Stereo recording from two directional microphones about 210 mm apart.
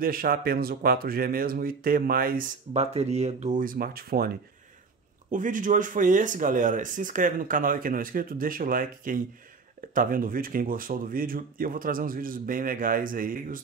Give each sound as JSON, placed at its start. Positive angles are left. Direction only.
{"t": 0.0, "sound": "speech", "side_deg": -45}
{"t": 2.7, "sound": "speech", "side_deg": -30}
{"t": 5.3, "sound": "speech", "side_deg": -40}